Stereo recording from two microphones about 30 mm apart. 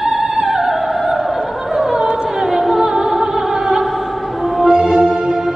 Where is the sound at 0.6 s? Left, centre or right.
Centre.